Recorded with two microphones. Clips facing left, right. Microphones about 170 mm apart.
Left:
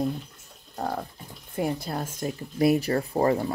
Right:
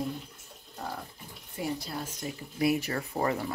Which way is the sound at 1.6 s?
50° left (ahead or behind).